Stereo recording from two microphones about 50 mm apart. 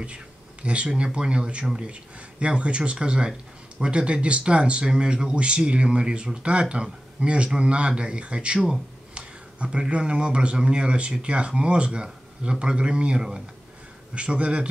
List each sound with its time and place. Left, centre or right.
0.0 s speech: right